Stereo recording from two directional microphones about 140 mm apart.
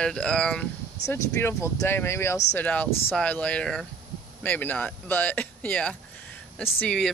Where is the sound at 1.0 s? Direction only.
20° left (ahead or behind).